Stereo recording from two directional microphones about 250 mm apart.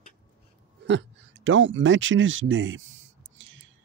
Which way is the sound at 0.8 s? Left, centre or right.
Right.